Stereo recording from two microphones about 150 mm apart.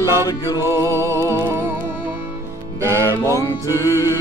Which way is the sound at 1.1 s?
20° left (ahead or behind).